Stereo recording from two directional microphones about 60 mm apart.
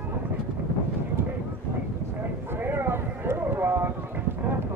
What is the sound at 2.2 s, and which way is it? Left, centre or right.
Clip-clop, right.